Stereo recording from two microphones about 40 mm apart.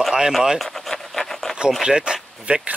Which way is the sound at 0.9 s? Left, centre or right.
Centre.